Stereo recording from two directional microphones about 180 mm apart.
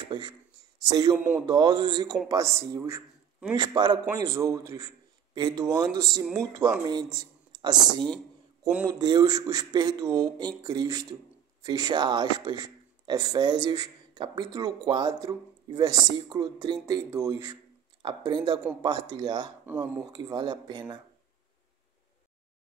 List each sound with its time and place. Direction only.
0.1 s speech: 25° right (ahead or behind)